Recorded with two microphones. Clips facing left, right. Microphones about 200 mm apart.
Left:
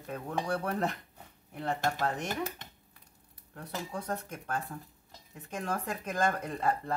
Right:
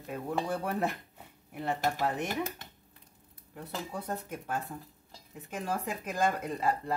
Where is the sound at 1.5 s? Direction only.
10° right (ahead or behind).